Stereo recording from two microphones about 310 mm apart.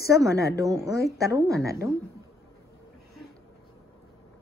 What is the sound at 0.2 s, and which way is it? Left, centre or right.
Speech, centre.